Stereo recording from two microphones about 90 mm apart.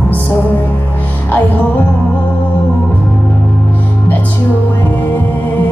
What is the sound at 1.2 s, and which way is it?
Music, 20° left (ahead or behind).